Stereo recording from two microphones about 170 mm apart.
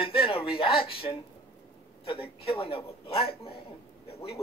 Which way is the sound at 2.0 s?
35° left (ahead or behind).